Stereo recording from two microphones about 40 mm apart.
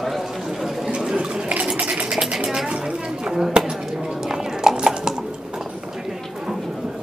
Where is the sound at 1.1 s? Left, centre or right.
Right.